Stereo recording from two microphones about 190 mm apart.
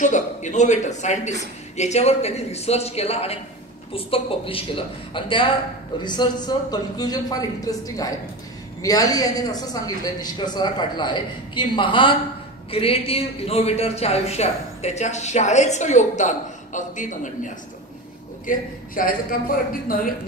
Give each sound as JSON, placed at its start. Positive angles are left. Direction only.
{"t": 0.0, "sound": "speech", "side_deg": 40}
{"t": 18.5, "sound": "a man's voice", "side_deg": 45}